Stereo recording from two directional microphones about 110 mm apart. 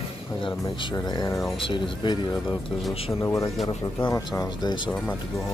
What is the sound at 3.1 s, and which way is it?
Speech, 25° left (ahead or behind).